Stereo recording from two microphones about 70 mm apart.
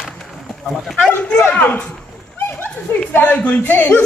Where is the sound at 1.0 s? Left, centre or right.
Centre.